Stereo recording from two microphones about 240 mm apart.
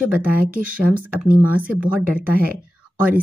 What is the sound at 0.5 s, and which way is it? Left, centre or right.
Speech, right.